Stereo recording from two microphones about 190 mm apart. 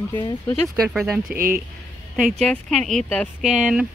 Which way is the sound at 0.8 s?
Centre (ahead or behind).